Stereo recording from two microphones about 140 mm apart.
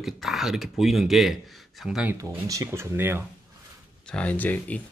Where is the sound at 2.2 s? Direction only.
20° right (ahead or behind).